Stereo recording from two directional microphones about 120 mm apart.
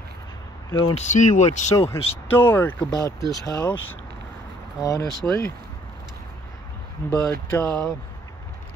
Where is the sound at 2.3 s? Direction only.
15° left (ahead or behind).